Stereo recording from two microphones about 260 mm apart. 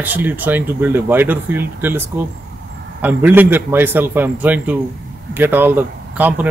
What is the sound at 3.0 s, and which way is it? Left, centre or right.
Speech, centre.